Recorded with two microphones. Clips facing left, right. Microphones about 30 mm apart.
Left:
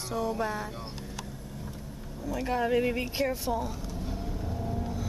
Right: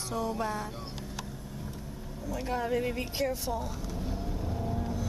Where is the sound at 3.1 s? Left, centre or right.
Centre.